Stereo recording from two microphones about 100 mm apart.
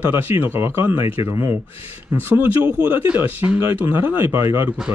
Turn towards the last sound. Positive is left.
turn(degrees=-25)  # may be behind; listen again after turning